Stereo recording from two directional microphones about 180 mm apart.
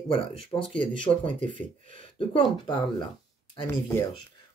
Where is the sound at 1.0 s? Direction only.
30° left (ahead or behind).